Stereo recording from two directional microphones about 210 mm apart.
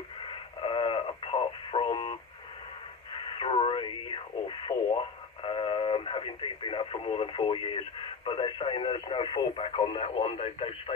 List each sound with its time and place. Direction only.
0.2 s radio: 25° left (ahead or behind)
3.2 s radio: 25° left (ahead or behind)
8.3 s speech: 25° left (ahead or behind)